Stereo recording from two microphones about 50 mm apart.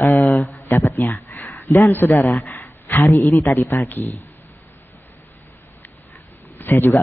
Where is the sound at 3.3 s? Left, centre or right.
Left.